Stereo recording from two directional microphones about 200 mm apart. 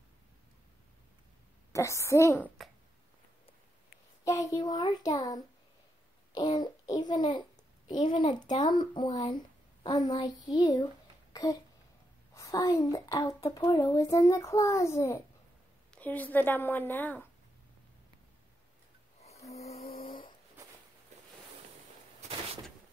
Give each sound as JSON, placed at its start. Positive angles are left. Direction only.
{"t": 1.7, "sound": "a child's voice", "side_deg": 15}
{"t": 4.2, "sound": "a child's voice", "side_deg": 15}
{"t": 19.5, "sound": "a sound", "side_deg": 30}